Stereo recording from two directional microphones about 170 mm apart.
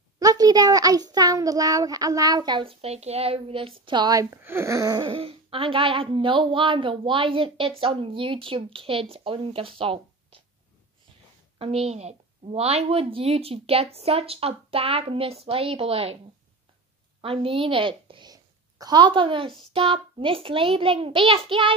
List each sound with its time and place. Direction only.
0.2 s a child's voice: 20° right (ahead or behind)
11.5 s a woman's voice: 35° right (ahead or behind)
17.2 s a woman's voice: 30° right (ahead or behind)